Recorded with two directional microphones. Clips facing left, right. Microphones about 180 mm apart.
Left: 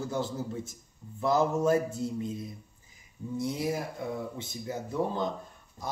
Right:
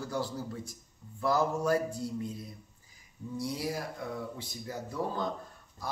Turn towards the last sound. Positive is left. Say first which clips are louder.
# left 3 dB
turn(degrees=25)  # may be behind; listen again after turning